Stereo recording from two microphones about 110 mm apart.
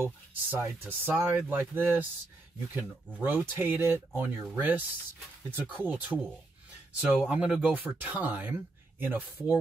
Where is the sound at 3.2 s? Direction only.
20° right (ahead or behind).